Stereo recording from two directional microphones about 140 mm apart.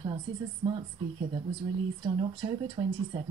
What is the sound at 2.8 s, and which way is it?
Speech, 40° right (ahead or behind).